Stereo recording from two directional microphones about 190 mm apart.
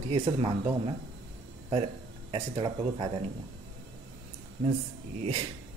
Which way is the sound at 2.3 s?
25° right (ahead or behind).